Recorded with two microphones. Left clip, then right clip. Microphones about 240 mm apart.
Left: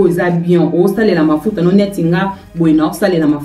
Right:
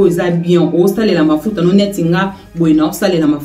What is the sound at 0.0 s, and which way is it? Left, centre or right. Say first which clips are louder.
Speech: even; centre.